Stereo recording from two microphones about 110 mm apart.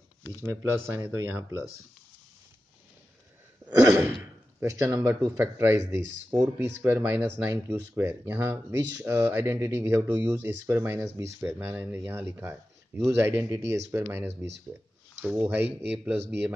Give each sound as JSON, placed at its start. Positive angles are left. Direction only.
{"t": 0.6, "sound": "speech", "side_deg": -30}
{"t": 3.8, "sound": "sigh", "side_deg": -25}
{"t": 4.6, "sound": "speech", "side_deg": -30}
{"t": 5.3, "sound": "speech", "side_deg": -20}